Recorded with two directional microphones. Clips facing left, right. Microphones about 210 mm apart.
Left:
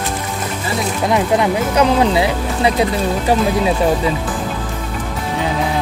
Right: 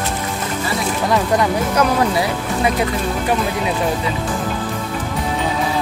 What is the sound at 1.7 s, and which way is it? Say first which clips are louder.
Speech: left 4 dB; 20° left (ahead or behind).